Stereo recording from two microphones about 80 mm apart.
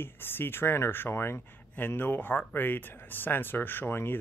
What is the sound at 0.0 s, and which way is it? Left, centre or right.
Speech, left.